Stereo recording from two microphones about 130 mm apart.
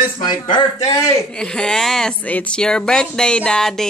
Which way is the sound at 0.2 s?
35° left (ahead or behind).